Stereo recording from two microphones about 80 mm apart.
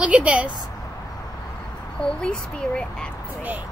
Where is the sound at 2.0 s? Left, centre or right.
Centre.